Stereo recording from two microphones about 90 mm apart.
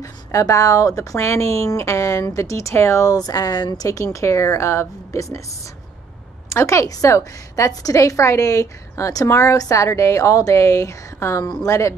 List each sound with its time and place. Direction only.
0.0 s speech: 35° left (ahead or behind)
6.5 s speech: 35° left (ahead or behind)